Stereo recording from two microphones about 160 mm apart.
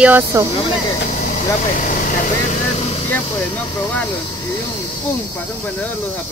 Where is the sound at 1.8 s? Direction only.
55° left (ahead or behind).